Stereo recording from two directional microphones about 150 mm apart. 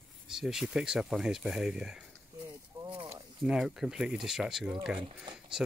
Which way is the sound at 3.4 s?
5° right (ahead or behind).